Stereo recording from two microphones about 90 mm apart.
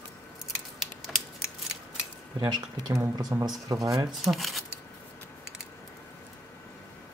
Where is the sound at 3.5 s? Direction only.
45° right (ahead or behind).